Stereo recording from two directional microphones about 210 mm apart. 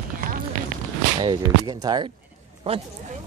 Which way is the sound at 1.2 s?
20° right (ahead or behind).